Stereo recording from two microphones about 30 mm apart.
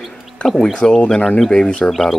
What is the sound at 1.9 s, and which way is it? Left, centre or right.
Speech, centre.